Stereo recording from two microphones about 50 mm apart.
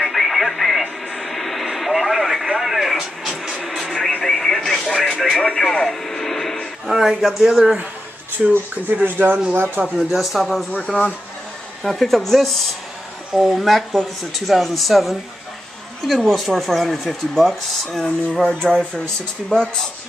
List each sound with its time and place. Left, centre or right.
0.1 s radio: centre
6.9 s speech: centre
8.5 s speech: right
9.9 s speech: centre
10.7 s speech: left
11.8 s speech: centre